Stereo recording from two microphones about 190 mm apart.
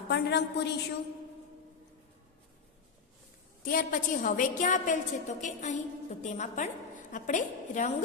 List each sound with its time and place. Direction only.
0.1 s a woman's voice: 60° left (ahead or behind)
3.6 s a woman's voice: 45° left (ahead or behind)